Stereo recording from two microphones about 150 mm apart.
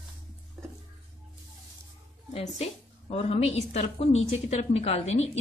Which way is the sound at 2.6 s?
45° left (ahead or behind).